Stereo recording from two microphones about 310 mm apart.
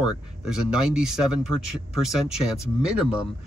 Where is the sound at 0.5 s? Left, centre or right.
Centre.